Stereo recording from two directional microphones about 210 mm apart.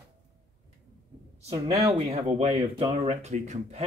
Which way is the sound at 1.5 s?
30° right (ahead or behind).